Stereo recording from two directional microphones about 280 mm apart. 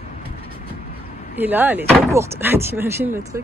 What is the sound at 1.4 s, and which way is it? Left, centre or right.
Speech, centre.